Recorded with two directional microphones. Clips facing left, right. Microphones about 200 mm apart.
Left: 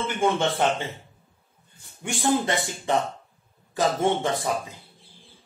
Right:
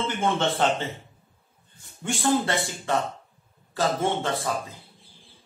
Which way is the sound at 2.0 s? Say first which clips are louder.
Even; 15° left (ahead or behind).